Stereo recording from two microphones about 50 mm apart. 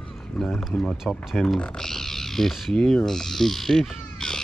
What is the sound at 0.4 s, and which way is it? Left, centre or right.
Speech, centre.